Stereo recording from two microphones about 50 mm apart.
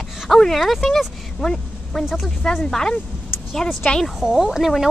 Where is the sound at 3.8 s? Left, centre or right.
Left.